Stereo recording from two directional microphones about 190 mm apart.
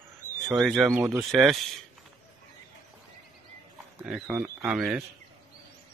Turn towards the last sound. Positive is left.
turn(degrees=-5)  # may be behind; listen again after turning